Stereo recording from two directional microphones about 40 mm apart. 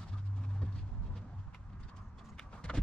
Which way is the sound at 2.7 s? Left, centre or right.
Centre.